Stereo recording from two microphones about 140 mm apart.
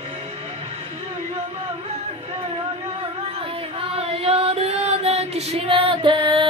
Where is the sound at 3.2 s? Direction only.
45° right (ahead or behind).